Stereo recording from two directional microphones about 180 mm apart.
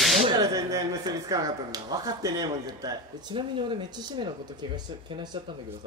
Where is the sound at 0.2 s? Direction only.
20° right (ahead or behind).